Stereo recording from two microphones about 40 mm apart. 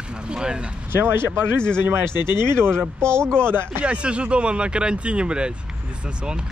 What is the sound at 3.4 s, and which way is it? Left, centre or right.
Speech, right.